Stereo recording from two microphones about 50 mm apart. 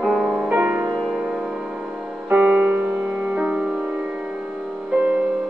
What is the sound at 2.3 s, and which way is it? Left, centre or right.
Music, right.